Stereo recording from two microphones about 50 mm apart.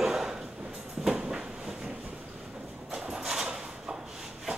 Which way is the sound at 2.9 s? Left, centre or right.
Centre.